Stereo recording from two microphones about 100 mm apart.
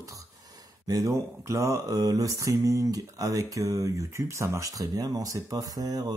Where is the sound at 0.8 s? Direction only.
35° right (ahead or behind).